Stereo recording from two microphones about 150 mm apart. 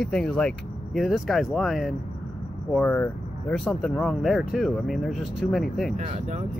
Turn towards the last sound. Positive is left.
turn(degrees=-45)  # may be behind; listen again after turning